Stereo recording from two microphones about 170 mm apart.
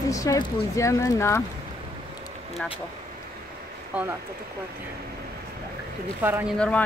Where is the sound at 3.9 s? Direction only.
10° right (ahead or behind).